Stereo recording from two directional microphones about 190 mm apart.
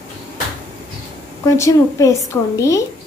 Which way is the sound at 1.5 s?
15° left (ahead or behind).